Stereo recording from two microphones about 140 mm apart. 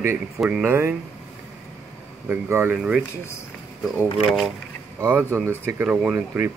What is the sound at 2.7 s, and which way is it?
Speech, 5° right (ahead or behind).